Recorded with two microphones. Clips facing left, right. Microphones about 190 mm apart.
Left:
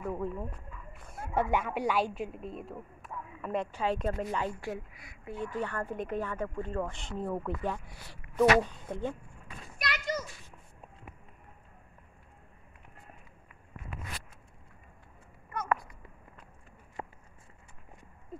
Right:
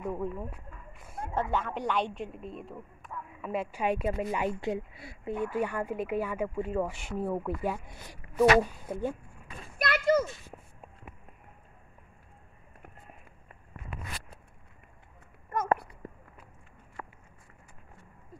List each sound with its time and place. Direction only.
0.0 s speech: centre (ahead or behind)
1.3 s a woman's voice: 10° left (ahead or behind); by 5.3 s 25° right (ahead or behind)
5.4 s speech: 10° right (ahead or behind)
7.8 s speech: 20° right (ahead or behind)
8.4 s speech: 5° right (ahead or behind)
9.8 s a child's voice: 55° right (ahead or behind)
16.0 s walk: 45° right (ahead or behind)
17.0 s a sound: 25° left (ahead or behind)
18.3 s owl: 25° left (ahead or behind)